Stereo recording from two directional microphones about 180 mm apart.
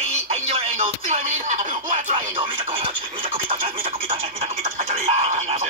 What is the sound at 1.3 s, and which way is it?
Speech, 45° right (ahead or behind).